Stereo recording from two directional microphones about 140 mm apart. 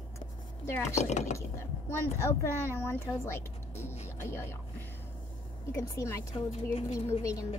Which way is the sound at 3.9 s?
55° left (ahead or behind).